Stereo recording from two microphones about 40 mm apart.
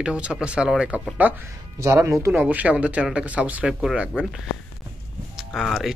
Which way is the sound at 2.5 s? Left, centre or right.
Right.